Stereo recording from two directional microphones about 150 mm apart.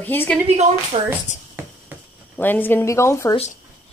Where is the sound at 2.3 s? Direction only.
10° left (ahead or behind).